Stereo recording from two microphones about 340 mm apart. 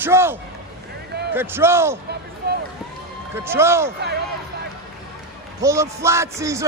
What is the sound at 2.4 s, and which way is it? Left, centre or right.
Run, right.